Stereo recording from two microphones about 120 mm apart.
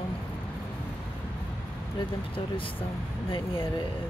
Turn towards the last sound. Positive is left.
turn(degrees=45)  # may be behind; listen again after turning